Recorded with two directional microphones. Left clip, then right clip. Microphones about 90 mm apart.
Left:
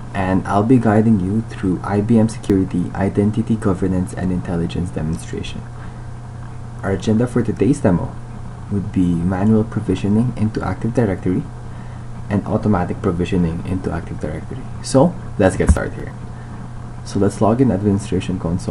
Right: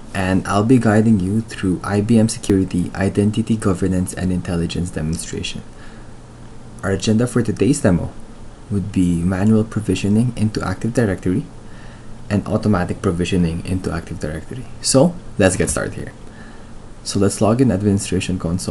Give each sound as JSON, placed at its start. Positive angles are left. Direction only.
{"t": 0.1, "sound": "speech", "side_deg": 0}
{"t": 6.8, "sound": "speech", "side_deg": 0}
{"t": 17.0, "sound": "speech", "side_deg": 0}